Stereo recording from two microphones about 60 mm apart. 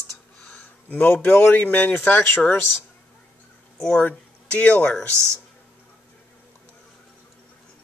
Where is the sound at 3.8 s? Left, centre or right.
Centre.